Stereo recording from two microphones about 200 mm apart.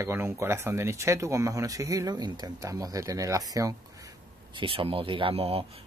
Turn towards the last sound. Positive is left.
turn(degrees=-30)  # may be behind; listen again after turning